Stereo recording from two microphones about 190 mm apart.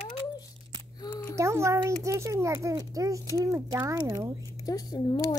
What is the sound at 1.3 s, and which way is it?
A child's voice, 15° right (ahead or behind).